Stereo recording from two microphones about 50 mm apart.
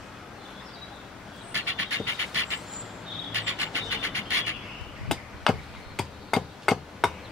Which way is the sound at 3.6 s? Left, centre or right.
Left.